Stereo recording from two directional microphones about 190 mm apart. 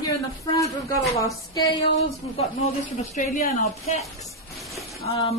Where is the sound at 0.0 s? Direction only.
20° left (ahead or behind).